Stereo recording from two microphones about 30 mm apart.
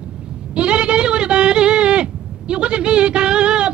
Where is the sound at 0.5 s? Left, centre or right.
Right.